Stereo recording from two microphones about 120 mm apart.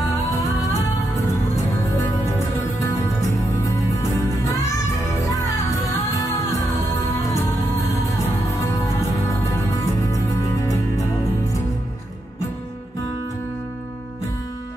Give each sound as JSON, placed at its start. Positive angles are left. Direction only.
{"t": 3.2, "sound": "music", "side_deg": 25}
{"t": 7.2, "sound": "music", "side_deg": 25}
{"t": 9.8, "sound": "music", "side_deg": 25}